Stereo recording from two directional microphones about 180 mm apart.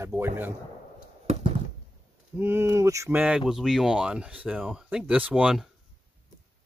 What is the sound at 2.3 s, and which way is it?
Speech, 10° right (ahead or behind).